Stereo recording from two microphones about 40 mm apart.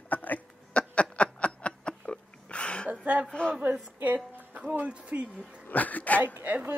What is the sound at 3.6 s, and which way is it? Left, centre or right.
A woman's voice, right.